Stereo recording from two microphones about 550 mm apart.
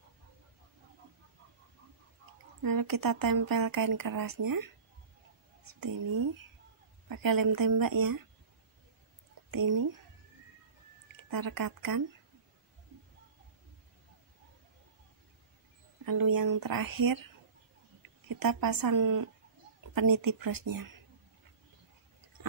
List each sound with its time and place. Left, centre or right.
2.6 s speech: right
9.5 s speech: right
11.2 s speech: right
16.1 s speech: right